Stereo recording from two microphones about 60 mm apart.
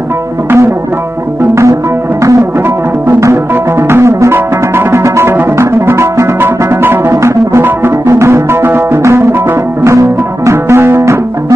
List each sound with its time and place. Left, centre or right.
1.5 s music: right
3.9 s music: right
7.1 s music: right
9.0 s music: right